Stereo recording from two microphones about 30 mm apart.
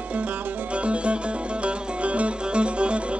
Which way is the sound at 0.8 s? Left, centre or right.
Right.